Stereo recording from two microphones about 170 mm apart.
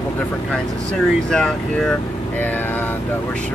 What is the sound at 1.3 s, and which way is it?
Speech, 5° left (ahead or behind).